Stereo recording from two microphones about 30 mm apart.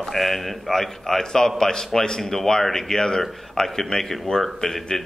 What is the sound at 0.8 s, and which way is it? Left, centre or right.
A man's voice, centre.